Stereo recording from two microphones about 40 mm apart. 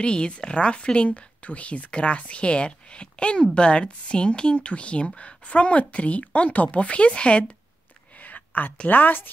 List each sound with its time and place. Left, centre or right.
0.0 s speech: left
8.2 s a sound: left
8.8 s speech: left